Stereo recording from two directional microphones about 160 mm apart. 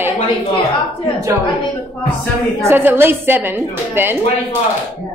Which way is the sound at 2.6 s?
15° right (ahead or behind).